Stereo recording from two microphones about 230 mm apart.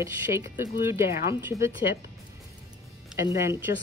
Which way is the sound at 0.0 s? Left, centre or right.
Centre.